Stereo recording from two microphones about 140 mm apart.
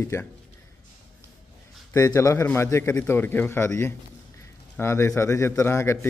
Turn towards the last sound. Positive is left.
turn(degrees=20)  # may be behind; listen again after turning